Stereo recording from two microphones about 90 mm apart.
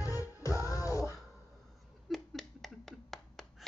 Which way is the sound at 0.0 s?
35° left (ahead or behind).